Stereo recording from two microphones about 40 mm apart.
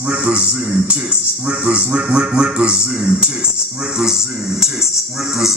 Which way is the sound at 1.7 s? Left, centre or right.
Right.